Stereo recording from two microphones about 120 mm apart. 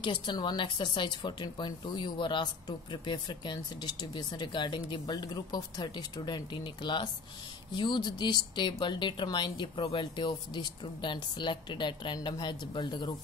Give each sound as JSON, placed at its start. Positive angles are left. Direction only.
{"t": 0.0, "sound": "speech", "side_deg": 40}